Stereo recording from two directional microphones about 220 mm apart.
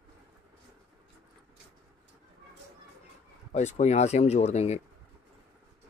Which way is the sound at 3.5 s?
30° left (ahead or behind).